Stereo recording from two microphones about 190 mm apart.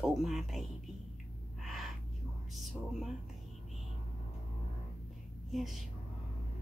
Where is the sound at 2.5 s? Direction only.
Centre (ahead or behind).